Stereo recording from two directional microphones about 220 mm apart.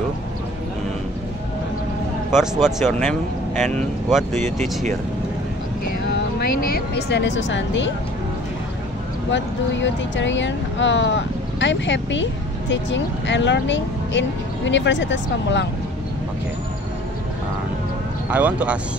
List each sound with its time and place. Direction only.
2.3 s speech: centre (ahead or behind)
4.3 s speech: 35° right (ahead or behind)
5.9 s speech: 45° left (ahead or behind)
9.3 s speech: 55° left (ahead or behind)
18.3 s speech: 5° right (ahead or behind)